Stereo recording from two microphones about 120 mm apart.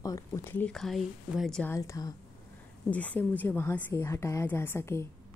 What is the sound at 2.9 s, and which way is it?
A woman's voice, 15° left (ahead or behind).